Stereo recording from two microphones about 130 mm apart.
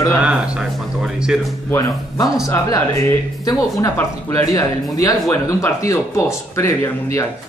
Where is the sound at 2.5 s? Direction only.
20° left (ahead or behind).